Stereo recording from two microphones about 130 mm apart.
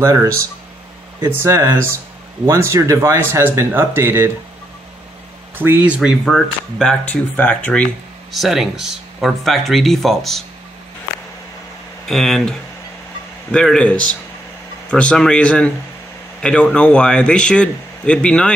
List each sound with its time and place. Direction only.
0.0 s speech: 25° right (ahead or behind)
5.6 s speech: 15° right (ahead or behind)
5.9 s speech: centre (ahead or behind)
8.3 s speech: centre (ahead or behind)
12.1 s speech: centre (ahead or behind)